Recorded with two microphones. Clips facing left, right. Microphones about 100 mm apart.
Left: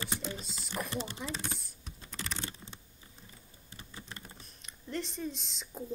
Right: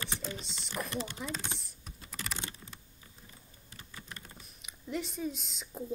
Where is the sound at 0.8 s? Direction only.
30° left (ahead or behind).